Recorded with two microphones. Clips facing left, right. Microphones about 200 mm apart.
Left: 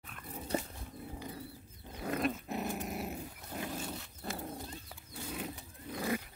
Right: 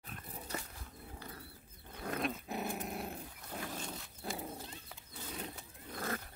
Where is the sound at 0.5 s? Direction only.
30° left (ahead or behind).